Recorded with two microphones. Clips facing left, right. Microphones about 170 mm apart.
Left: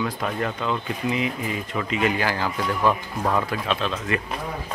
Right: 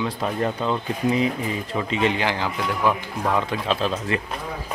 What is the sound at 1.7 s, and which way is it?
Speech, 25° right (ahead or behind).